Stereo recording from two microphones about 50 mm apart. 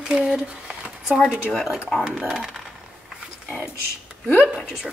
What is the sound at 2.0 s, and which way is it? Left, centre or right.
Speech, centre.